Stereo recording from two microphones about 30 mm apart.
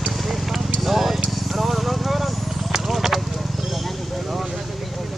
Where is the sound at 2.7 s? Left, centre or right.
Centre.